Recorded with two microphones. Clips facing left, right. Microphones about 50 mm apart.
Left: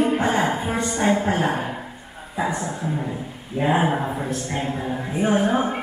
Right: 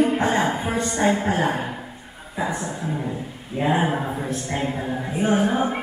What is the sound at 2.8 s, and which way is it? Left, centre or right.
Music, centre.